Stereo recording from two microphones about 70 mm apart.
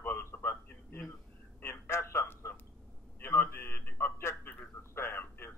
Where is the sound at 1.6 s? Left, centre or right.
Left.